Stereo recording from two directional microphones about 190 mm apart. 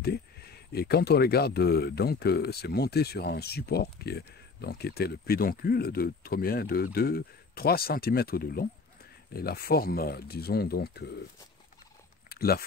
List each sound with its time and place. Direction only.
0.0 s speech: 55° left (ahead or behind)
12.3 s biting: 55° left (ahead or behind)